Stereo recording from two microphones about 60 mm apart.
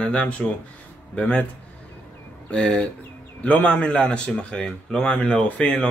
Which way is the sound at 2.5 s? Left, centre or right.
Centre.